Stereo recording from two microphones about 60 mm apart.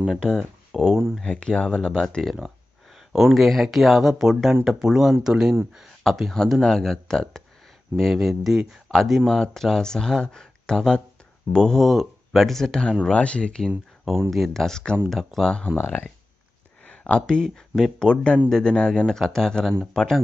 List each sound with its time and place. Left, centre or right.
0.2 s speech: centre
2.0 s speech: centre
6.6 s speech: centre
13.1 s speech: centre
14.3 s speech: centre
15.7 s speech: left
17.1 s speech: centre